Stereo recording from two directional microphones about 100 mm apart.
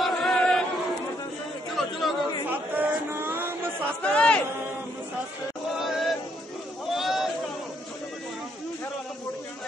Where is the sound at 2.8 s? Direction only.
20° right (ahead or behind).